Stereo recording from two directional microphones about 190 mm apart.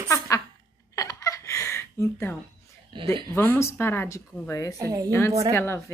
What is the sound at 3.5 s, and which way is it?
Speech, 15° left (ahead or behind).